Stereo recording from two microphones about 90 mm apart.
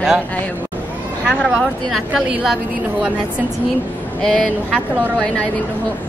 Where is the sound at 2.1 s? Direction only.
15° right (ahead or behind).